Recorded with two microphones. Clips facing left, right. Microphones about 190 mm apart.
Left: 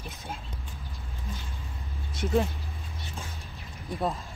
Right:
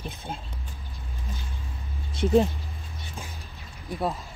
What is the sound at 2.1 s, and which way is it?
Speech, 30° right (ahead or behind).